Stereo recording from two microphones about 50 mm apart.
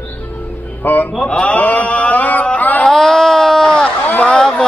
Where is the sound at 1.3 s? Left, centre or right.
Left.